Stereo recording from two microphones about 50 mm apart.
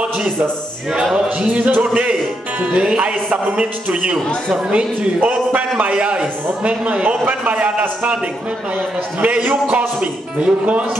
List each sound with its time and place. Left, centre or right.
1.1 s speech: centre
9.2 s speech: right